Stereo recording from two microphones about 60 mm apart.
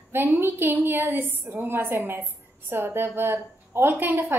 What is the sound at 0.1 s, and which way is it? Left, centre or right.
A woman's voice, right.